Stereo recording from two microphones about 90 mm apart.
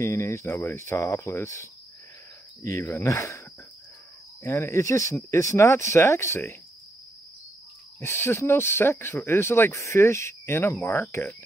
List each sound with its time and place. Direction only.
0.0 s speech: 35° left (ahead or behind)
8.0 s speech: 25° left (ahead or behind)